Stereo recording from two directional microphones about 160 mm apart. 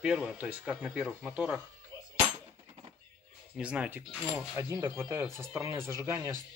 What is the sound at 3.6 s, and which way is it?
Speech, 5° right (ahead or behind).